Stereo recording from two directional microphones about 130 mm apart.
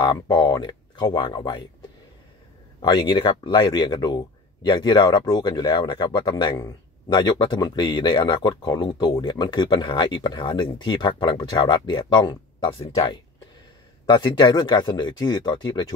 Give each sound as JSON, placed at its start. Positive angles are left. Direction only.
{"t": 0.0, "sound": "speech", "side_deg": 35}
{"t": 2.8, "sound": "speech", "side_deg": 35}